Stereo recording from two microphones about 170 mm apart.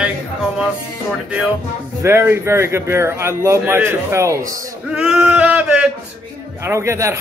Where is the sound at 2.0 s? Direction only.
15° right (ahead or behind).